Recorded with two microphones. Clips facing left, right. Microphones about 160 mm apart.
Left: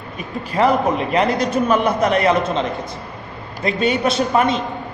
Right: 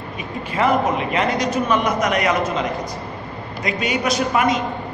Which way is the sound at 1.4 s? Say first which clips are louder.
Left 2 dB; 55° left (ahead or behind).